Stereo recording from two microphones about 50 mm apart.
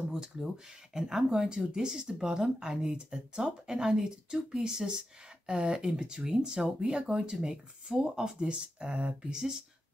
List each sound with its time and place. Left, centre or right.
0.1 s speech: centre